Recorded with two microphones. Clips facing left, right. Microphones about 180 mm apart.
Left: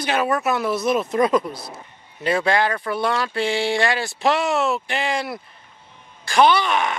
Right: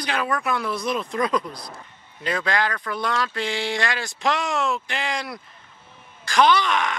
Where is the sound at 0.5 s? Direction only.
5° left (ahead or behind).